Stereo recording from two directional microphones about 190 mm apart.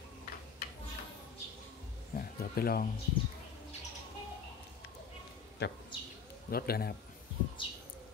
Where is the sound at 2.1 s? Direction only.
50° left (ahead or behind).